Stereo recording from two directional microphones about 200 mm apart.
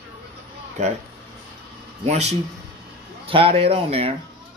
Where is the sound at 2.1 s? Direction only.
35° right (ahead or behind).